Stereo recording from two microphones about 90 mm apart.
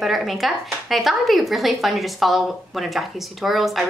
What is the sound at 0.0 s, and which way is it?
A woman's voice, centre (ahead or behind).